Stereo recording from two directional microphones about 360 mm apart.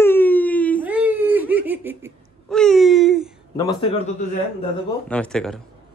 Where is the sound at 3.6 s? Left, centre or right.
Centre.